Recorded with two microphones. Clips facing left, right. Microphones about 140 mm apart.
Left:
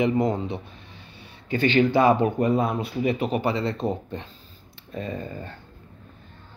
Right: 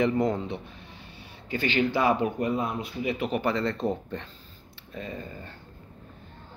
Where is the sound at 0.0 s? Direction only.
20° left (ahead or behind); by 3.3 s 35° left (ahead or behind).